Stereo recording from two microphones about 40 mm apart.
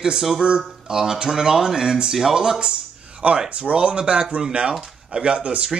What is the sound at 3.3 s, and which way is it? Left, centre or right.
Speech, right.